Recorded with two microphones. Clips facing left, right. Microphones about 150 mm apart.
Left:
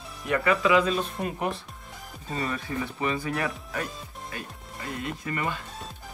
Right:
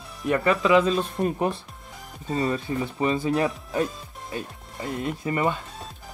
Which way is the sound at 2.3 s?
25° right (ahead or behind).